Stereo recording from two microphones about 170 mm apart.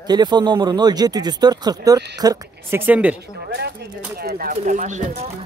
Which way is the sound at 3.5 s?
70° right (ahead or behind).